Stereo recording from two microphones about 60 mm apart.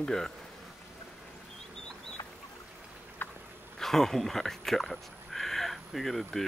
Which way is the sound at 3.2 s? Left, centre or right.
Left.